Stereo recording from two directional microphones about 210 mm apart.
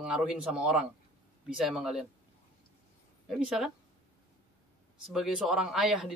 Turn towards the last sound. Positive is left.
turn(degrees=0)  # may be behind; listen again after turning